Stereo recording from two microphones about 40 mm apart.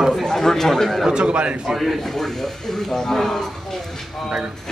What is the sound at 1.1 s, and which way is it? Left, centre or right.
Speech, right.